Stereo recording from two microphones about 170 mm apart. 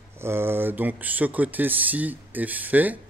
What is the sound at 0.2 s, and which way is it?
Speech, 15° right (ahead or behind).